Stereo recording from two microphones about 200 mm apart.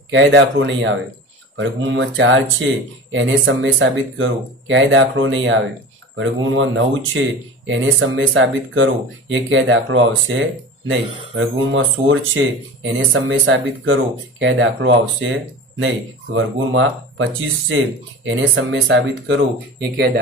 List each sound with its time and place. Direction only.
0.1 s speech: 65° right (ahead or behind)
16.3 s speech: 75° right (ahead or behind)